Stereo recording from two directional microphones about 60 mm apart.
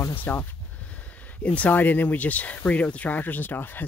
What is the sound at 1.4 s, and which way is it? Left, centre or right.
Speech, left.